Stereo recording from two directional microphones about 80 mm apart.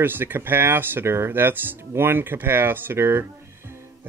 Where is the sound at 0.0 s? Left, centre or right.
Right.